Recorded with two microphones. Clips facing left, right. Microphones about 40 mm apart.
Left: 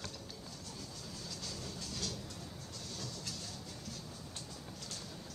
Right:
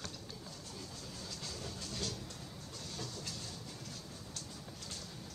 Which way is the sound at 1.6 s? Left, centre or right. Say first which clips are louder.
Right 2 dB; centre.